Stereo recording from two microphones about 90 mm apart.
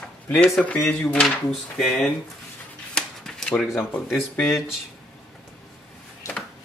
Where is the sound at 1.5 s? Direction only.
Centre (ahead or behind).